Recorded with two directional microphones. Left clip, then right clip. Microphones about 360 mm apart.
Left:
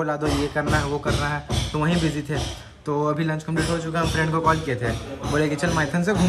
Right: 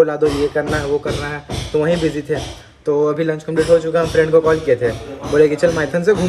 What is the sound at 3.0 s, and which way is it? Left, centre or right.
A man's voice, centre.